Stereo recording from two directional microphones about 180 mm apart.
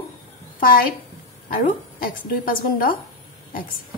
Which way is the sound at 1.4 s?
50° left (ahead or behind).